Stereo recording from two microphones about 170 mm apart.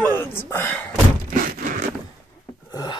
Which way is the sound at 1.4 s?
55° right (ahead or behind).